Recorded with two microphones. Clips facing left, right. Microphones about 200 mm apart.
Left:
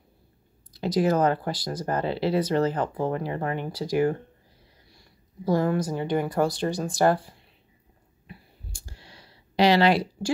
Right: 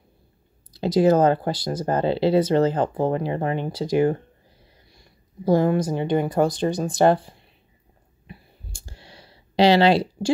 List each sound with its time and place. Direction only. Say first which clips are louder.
0.7 s speech: right 5 dB; 25° right (ahead or behind)
8.3 s clicking: right 2 dB; 25° right (ahead or behind)